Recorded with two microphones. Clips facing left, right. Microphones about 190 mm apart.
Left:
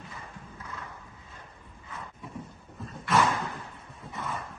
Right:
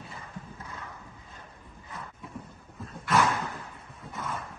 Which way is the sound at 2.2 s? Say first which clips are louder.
Left 1 dB; centre (ahead or behind).